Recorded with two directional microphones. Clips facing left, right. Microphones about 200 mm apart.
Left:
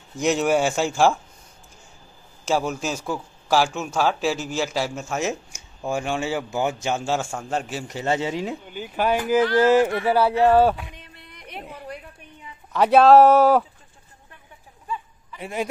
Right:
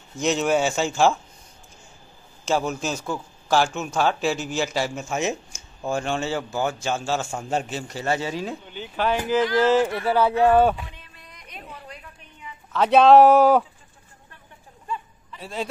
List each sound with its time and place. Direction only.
0.1 s speech: 10° left (ahead or behind)
2.5 s speech: centre (ahead or behind)
7.2 s speech: 5° right (ahead or behind)
7.6 s a man's voice: 15° left (ahead or behind)
8.6 s speech: 10° left (ahead or behind)
11.1 s music: 60° left (ahead or behind)
12.7 s speech: 10° left (ahead or behind)
15.3 s speech: 15° left (ahead or behind)